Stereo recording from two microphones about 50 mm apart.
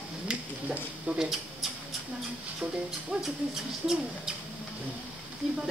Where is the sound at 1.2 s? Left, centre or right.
Centre.